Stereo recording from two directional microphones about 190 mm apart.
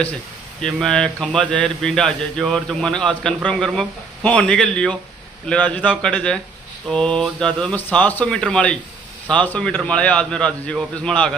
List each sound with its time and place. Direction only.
0.6 s a man's voice: 5° left (ahead or behind)